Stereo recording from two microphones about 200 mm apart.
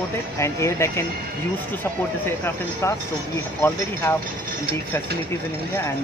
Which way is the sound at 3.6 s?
10° left (ahead or behind).